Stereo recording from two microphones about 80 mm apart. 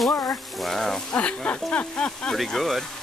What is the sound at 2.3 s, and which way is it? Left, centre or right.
Speech, centre.